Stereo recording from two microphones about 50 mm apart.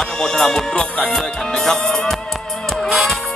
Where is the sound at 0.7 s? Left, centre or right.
Left.